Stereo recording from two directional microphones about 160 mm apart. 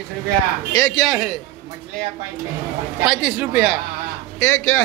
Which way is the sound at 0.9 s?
Centre (ahead or behind).